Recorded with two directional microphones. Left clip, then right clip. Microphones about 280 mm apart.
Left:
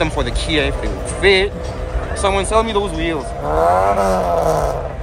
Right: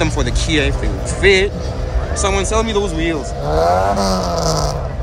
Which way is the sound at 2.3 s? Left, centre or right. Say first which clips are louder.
Left 1 dB; centre.